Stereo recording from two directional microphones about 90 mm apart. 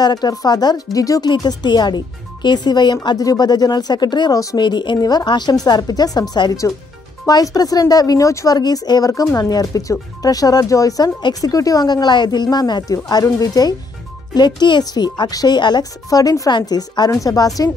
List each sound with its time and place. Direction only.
0.0 s speech: 50° left (ahead or behind)
1.3 s speech: 55° left (ahead or behind)
12.8 s speech: 40° left (ahead or behind)